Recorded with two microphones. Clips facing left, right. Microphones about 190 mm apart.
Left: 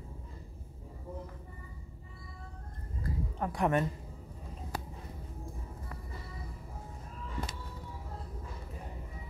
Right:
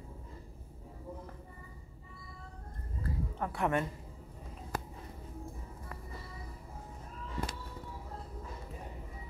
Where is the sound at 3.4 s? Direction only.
15° left (ahead or behind).